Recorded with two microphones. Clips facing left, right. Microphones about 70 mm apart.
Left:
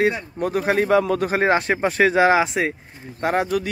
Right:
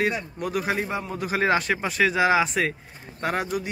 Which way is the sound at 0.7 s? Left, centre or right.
Left.